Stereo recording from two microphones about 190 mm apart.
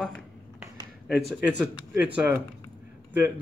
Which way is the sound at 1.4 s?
10° right (ahead or behind).